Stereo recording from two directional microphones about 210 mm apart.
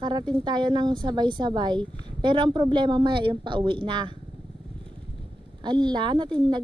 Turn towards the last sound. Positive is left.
turn(degrees=-20)  # may be behind; listen again after turning